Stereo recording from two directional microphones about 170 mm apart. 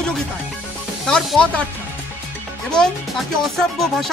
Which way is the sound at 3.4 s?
Centre (ahead or behind).